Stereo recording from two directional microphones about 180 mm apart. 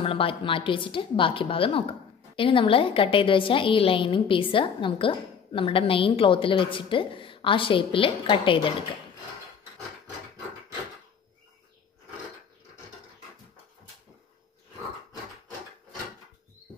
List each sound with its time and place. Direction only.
0.0 s a woman's voice: 30° left (ahead or behind)